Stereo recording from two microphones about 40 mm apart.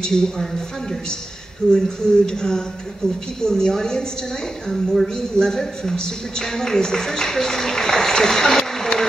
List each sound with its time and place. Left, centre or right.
0.0 s a man's voice: centre
1.6 s a man's voice: centre